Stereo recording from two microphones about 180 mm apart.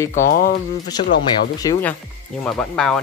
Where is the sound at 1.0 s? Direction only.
75° left (ahead or behind).